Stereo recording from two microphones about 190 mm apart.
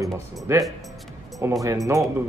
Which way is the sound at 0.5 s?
15° right (ahead or behind).